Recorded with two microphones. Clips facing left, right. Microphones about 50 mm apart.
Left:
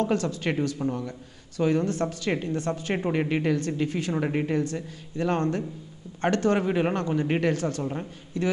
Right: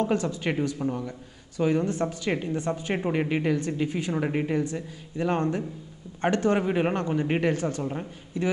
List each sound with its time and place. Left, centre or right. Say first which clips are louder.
0.0 s speech: even; right
0.8 s speech: even; centre
1.6 s speech: even; centre
2.9 s speech: left 1 dB; centre
3.8 s speech: even; centre
4.1 s speech: even; centre
4.6 s speech: even; centre
7.8 s speech: even; centre
8.3 s speech: even; right